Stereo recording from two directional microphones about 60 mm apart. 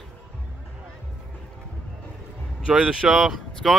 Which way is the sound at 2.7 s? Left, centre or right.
Centre.